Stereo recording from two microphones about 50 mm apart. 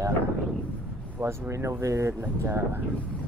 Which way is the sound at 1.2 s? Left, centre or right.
Right.